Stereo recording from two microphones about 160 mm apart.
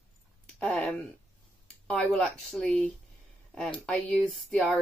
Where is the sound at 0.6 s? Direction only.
5° left (ahead or behind).